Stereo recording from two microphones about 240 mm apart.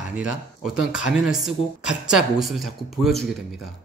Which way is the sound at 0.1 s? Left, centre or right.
Centre.